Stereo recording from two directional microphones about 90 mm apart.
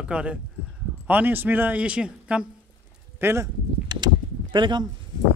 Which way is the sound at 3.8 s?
55° right (ahead or behind).